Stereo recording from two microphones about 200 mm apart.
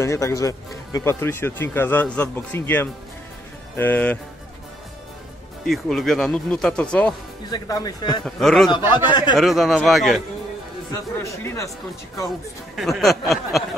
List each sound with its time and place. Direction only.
0.0 s speech: 15° left (ahead or behind)
5.7 s speech: centre (ahead or behind)
7.4 s speech: 20° left (ahead or behind)
8.4 s speech: centre (ahead or behind)
8.7 s speech: 20° left (ahead or behind)
9.4 s speech: centre (ahead or behind)
10.9 s speech: 15° left (ahead or behind)
12.3 s speech: centre (ahead or behind)